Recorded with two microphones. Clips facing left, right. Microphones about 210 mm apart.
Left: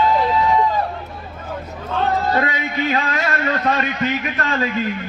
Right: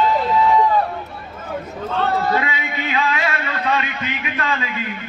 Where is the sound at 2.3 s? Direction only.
45° left (ahead or behind).